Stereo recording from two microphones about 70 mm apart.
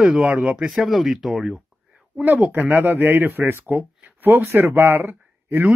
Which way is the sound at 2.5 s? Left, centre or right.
Right.